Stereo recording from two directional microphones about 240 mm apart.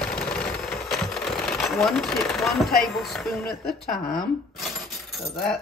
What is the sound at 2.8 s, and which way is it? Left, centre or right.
Speech, centre.